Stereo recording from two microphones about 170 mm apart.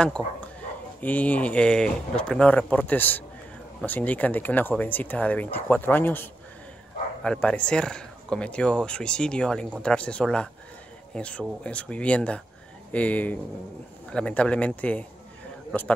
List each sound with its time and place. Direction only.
1.0 s speech: 10° left (ahead or behind)